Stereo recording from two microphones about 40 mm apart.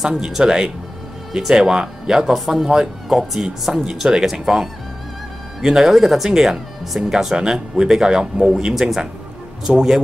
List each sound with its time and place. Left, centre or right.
0.0 s speech: centre
5.9 s speech: centre